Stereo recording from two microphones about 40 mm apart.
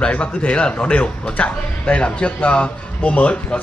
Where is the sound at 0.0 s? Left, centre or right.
Left.